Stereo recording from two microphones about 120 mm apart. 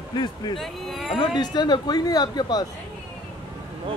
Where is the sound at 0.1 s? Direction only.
35° left (ahead or behind).